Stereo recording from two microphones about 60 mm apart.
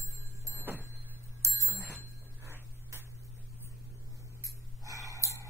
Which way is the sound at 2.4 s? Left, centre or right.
Right.